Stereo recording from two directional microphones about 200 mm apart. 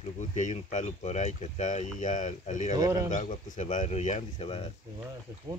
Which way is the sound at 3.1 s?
40° left (ahead or behind).